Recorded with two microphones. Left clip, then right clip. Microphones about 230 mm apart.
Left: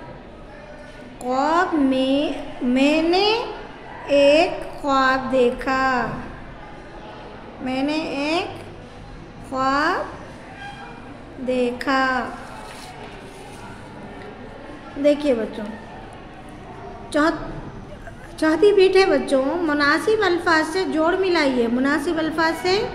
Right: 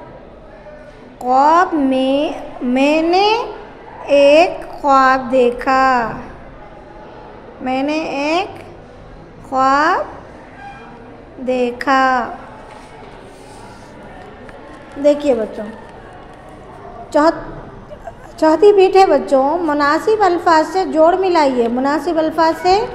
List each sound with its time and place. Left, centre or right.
1.2 s a woman's voice: centre
7.6 s a woman's voice: centre
9.5 s a woman's voice: centre
11.4 s a woman's voice: centre
15.0 s a woman's voice: centre
17.1 s a woman's voice: centre
18.4 s a woman's voice: centre